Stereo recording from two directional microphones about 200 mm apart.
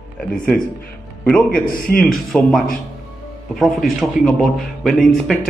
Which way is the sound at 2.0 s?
Centre (ahead or behind).